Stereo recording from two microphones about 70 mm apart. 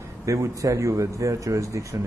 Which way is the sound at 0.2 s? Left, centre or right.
Right.